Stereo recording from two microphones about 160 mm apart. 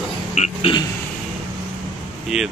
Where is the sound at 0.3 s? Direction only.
45° left (ahead or behind).